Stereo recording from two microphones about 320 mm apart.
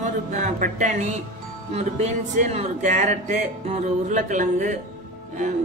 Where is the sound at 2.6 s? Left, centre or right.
Right.